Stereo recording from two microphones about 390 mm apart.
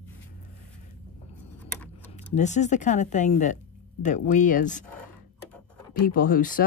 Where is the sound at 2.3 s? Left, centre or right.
Centre.